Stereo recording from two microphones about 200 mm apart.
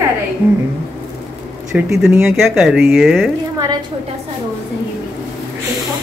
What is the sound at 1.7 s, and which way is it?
Speech, 5° right (ahead or behind).